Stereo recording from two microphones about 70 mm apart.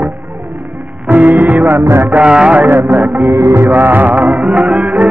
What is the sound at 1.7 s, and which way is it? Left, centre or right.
Music, right.